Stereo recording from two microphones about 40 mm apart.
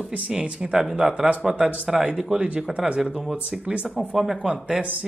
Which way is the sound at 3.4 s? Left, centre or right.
Right.